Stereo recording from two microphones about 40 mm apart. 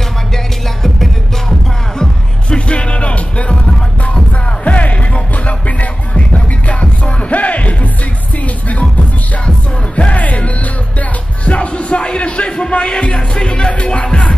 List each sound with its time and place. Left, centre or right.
0.8 s music: centre
2.5 s music: left
4.6 s music: left
9.9 s music: left